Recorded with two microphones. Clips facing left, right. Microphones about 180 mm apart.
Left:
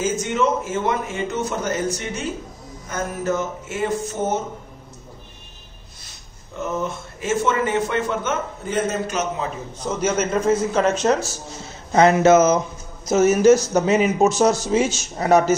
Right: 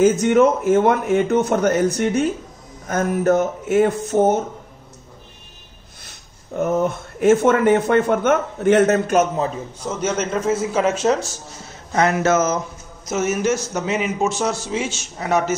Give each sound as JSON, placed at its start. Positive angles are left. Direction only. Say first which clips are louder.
{"t": 0.0, "sound": "a man's voice", "louder": "right 7 dB", "side_deg": -60}
{"t": 6.0, "sound": "speech", "louder": "right 10 dB", "side_deg": -60}
{"t": 9.8, "sound": "a man's voice", "louder": "left 1 dB", "side_deg": 0}
{"t": 11.9, "sound": "a sound", "louder": "left 4 dB", "side_deg": 25}
{"t": 13.0, "sound": "a man's voice", "louder": "left 6 dB", "side_deg": 35}